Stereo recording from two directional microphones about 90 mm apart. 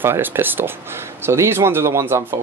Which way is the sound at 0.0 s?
25° right (ahead or behind).